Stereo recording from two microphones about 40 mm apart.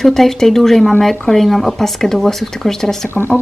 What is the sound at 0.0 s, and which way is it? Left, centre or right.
A woman's voice, centre.